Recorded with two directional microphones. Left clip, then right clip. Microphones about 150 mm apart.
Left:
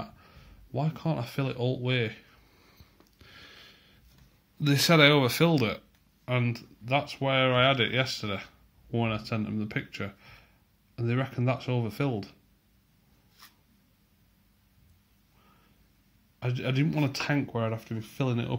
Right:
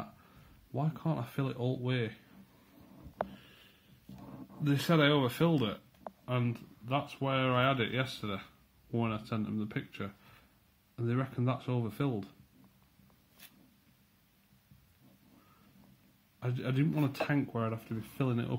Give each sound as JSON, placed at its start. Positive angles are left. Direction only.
{"t": 0.2, "sound": "speech", "side_deg": 10}
{"t": 3.3, "sound": "a sound", "side_deg": 60}
{"t": 4.6, "sound": "speech", "side_deg": 45}
{"t": 6.2, "sound": "speech", "side_deg": 15}
{"t": 16.3, "sound": "speech", "side_deg": 10}